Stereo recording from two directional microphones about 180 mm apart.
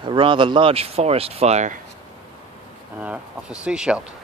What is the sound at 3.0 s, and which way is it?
Speech, 5° right (ahead or behind).